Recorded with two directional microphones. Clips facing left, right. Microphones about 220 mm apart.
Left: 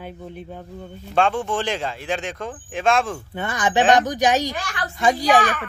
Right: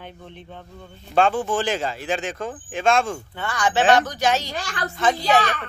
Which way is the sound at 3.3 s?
20° left (ahead or behind).